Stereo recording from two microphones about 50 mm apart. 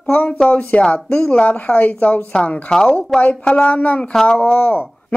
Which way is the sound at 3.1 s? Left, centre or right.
Centre.